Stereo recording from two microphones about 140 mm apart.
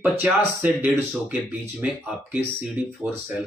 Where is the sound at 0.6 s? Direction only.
15° right (ahead or behind).